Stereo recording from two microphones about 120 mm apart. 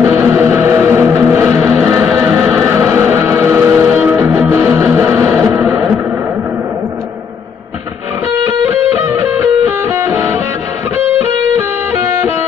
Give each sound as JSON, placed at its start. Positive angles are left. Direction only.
{"t": 0.1, "sound": "music", "side_deg": -20}
{"t": 9.7, "sound": "music", "side_deg": -25}
{"t": 11.1, "sound": "music", "side_deg": 60}